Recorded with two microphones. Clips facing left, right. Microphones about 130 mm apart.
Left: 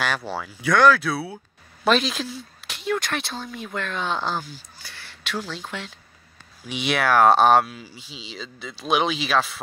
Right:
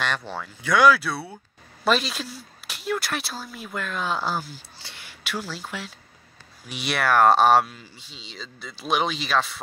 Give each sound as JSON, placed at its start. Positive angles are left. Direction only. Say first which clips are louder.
{"t": 0.0, "sound": "speech", "louder": "left 2 dB", "side_deg": 5}
{"t": 0.7, "sound": "speech", "louder": "left 1 dB", "side_deg": -10}